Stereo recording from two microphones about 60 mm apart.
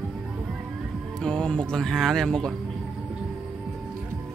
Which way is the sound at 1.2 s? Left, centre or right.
Centre.